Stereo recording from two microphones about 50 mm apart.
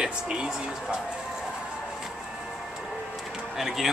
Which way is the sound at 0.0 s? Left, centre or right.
Centre.